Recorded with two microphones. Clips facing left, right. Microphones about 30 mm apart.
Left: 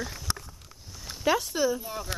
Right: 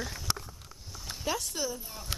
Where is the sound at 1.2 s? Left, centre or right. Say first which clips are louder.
Left 8 dB; centre.